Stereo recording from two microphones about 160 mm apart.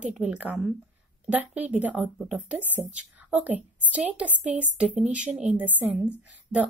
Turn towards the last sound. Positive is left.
turn(degrees=-10)  # may be behind; listen again after turning